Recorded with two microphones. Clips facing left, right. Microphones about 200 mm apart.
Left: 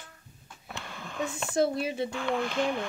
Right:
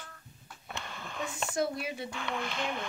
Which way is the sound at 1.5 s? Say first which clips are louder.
Left 6 dB; 25° left (ahead or behind).